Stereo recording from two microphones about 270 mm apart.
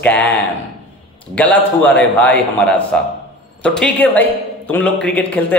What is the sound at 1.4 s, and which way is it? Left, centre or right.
A woman's voice, centre.